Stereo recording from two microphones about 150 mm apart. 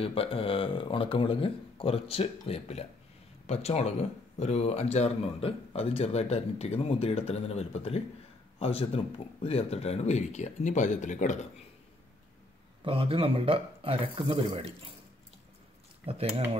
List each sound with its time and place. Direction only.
0.0 s a man's voice: 40° left (ahead or behind); by 11.3 s 55° left (ahead or behind)
12.8 s speech: 40° right (ahead or behind)
16.1 s speech: 40° right (ahead or behind)